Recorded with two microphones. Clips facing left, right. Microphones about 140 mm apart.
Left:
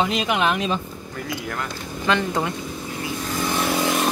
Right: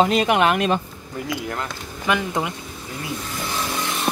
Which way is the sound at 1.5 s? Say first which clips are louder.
Even; 20° right (ahead or behind).